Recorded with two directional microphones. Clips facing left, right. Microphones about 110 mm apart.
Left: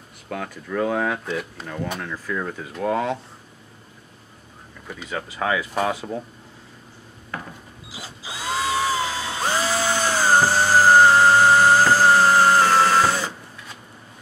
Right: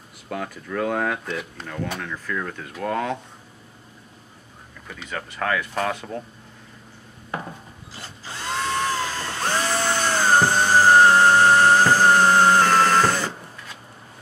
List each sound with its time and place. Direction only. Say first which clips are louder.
0.3 s speech: even; centre (ahead or behind)
4.8 s speech: left 2 dB; 10° left (ahead or behind)
7.3 s a sound: right 3 dB; 25° right (ahead or behind)
7.9 s drill: left 2 dB; 5° left (ahead or behind)